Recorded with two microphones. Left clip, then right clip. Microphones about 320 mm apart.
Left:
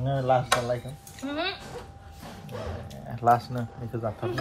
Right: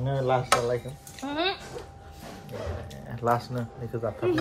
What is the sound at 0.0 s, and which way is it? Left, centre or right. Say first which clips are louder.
Speech: left 2 dB; centre.